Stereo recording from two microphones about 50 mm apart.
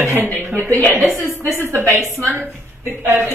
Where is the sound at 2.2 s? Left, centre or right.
Right.